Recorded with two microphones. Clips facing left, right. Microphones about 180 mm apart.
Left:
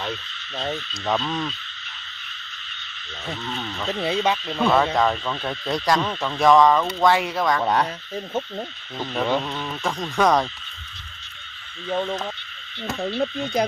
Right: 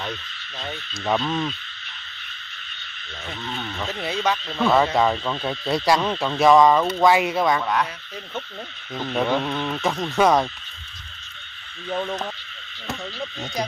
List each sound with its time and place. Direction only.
0.9 s speech: 5° right (ahead or behind)
3.4 s speech: centre (ahead or behind)
3.9 s speech: 25° left (ahead or behind)
4.6 s speech: centre (ahead or behind)
7.6 s speech: 35° left (ahead or behind)
9.5 s speech: 15° right (ahead or behind)
11.9 s speech: 15° left (ahead or behind)
13.0 s frog: 55° left (ahead or behind)